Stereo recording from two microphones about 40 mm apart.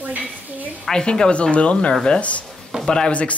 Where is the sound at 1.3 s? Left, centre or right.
Left.